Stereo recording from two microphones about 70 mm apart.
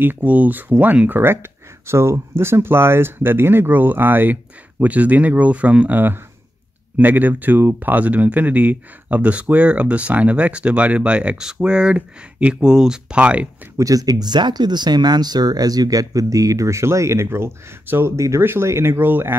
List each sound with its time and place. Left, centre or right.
0.0 s speech: right
13.7 s speech: right
18.1 s speech: right